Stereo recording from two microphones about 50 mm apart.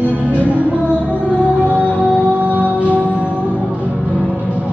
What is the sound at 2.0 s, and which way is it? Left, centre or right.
Music, right.